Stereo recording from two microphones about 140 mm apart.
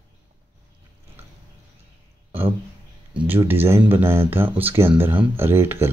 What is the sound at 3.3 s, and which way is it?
Speech, 15° right (ahead or behind).